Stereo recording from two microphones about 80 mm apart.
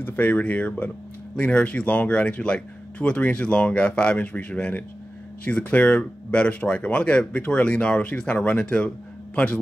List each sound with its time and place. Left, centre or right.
0.0 s speech: left